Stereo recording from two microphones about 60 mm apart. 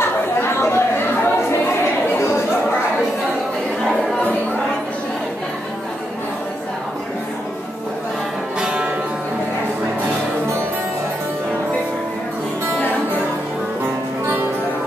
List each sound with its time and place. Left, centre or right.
0.0 s chatter: left
8.5 s music: centre